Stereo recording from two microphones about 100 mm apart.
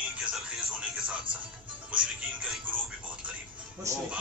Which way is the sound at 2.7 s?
15° right (ahead or behind).